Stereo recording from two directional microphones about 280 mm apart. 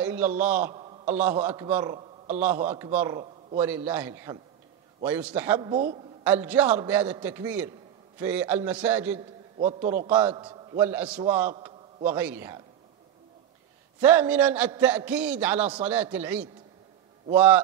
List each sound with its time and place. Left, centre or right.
0.0 s a man's voice: centre
2.0 s a sound: right
2.4 s a man's voice: centre
10.4 s a sound: centre
10.8 s a man's voice: centre
14.0 s a man's voice: centre